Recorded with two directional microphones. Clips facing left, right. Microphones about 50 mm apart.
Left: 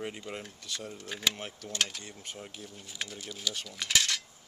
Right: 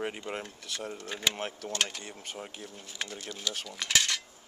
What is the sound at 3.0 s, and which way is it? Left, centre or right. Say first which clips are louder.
Cutlery: right 1 dB; centre.